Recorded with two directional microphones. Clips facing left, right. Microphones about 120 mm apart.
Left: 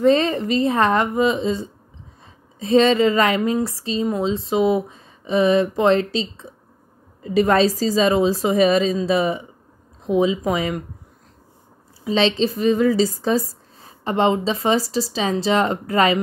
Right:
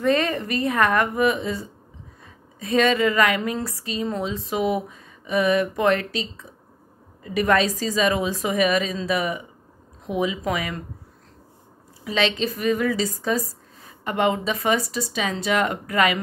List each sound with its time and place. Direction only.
0.0 s a woman's voice: 25° left (ahead or behind)
12.0 s a woman's voice: 30° left (ahead or behind)